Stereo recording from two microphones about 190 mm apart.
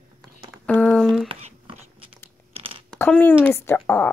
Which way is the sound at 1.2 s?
30° right (ahead or behind).